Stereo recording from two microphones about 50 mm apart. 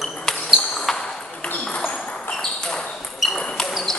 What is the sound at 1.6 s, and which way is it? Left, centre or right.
Ping, centre.